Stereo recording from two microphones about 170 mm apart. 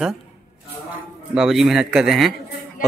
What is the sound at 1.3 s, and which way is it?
A man's voice, 5° right (ahead or behind).